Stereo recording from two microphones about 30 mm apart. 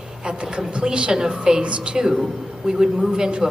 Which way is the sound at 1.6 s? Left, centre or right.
Right.